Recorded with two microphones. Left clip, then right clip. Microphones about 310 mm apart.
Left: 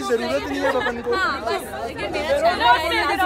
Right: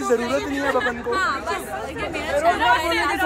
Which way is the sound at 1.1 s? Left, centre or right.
Centre.